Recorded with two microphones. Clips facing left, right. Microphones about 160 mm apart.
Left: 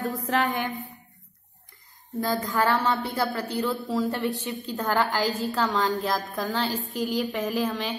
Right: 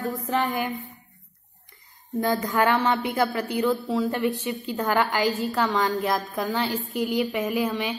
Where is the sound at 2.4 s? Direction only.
20° right (ahead or behind).